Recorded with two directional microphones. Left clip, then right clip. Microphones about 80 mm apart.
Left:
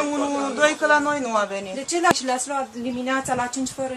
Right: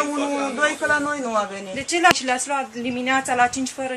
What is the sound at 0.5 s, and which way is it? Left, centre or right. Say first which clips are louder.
Speech: left 3 dB; left.